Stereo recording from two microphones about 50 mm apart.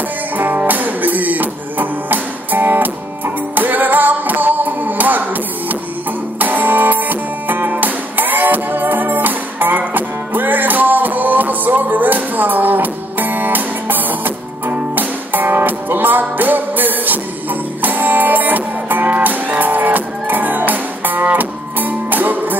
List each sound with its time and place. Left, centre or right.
0.4 s music: right